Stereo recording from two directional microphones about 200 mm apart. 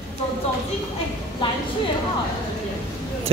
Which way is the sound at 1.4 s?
25° left (ahead or behind).